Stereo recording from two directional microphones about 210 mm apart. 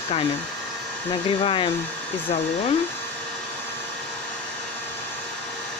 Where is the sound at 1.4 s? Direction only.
25° left (ahead or behind).